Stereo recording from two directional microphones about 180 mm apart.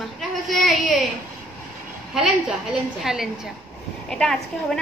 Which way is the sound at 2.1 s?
5° right (ahead or behind).